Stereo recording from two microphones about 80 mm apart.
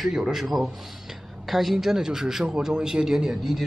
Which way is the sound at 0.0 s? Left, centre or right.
Centre.